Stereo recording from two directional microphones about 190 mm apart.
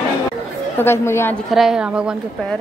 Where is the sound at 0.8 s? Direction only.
10° left (ahead or behind).